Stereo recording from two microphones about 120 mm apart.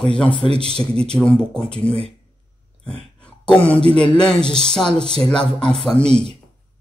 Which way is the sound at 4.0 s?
45° left (ahead or behind).